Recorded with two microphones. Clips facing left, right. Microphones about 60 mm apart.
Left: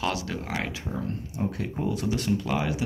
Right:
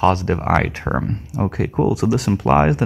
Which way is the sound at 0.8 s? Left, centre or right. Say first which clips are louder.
Right 10 dB; right.